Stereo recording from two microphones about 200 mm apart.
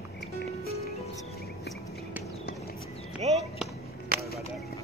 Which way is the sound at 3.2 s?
30° right (ahead or behind).